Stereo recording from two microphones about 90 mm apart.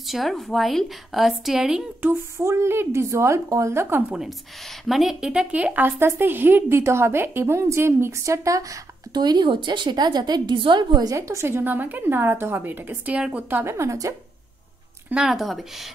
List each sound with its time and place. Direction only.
0.0 s a woman's voice: centre (ahead or behind)
2.0 s a woman's voice: 25° right (ahead or behind)
4.8 s a woman's voice: 5° right (ahead or behind); by 8.7 s 35° right (ahead or behind)
9.1 s a woman's voice: 50° right (ahead or behind)
11.1 s a woman's voice: 35° right (ahead or behind)
13.7 s speech: 35° right (ahead or behind)
15.0 s a woman's voice: 5° right (ahead or behind)